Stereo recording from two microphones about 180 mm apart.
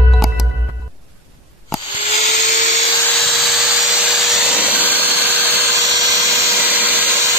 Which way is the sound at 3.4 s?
Centre (ahead or behind).